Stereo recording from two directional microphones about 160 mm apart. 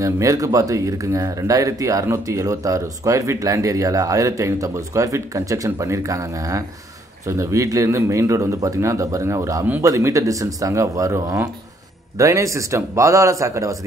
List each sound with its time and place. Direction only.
0.0 s speech: 20° right (ahead or behind)